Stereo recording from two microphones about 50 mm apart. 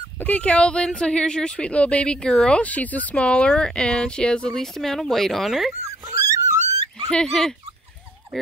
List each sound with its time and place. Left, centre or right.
0.2 s speech: left
2.1 s speech: centre
2.6 s speech: left; by 5.5 s centre
5.5 s speech: centre
6.0 s dog: right
7.1 s speech: centre